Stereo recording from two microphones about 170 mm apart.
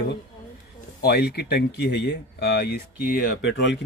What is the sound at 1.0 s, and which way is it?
A man's voice, 65° left (ahead or behind).